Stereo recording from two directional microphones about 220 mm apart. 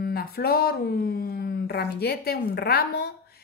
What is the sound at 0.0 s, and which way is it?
Speech, 45° left (ahead or behind).